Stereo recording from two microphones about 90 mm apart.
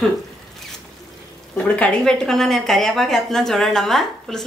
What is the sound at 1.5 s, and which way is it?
A woman's voice, 15° left (ahead or behind).